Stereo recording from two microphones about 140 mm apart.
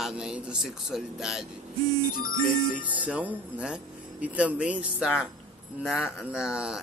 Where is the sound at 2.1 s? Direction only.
80° left.